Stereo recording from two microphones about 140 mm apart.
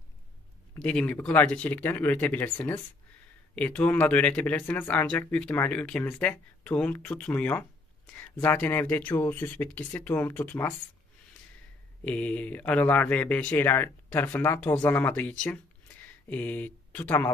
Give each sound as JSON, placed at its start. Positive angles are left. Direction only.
{"t": 0.8, "sound": "speech", "side_deg": 10}
{"t": 12.0, "sound": "speech", "side_deg": 10}